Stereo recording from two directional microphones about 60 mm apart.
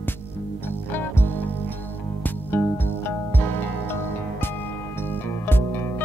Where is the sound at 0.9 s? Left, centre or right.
Left.